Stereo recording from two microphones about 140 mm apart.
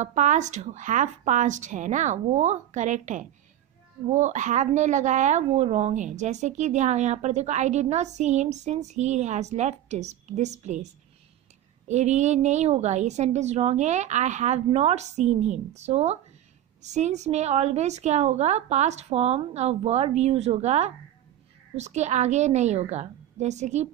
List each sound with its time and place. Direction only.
0.0 s speech: 60° right (ahead or behind)
11.9 s a woman's voice: 55° right (ahead or behind)